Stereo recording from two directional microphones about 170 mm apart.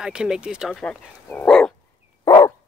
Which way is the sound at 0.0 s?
5° right (ahead or behind).